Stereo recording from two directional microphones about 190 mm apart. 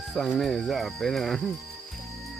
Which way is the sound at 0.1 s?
Centre (ahead or behind).